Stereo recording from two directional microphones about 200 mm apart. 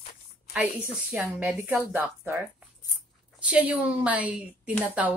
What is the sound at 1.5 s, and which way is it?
A woman's voice, centre (ahead or behind).